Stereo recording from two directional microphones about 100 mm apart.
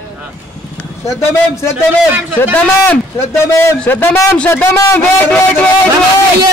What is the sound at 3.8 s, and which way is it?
A man's voice, 15° left (ahead or behind).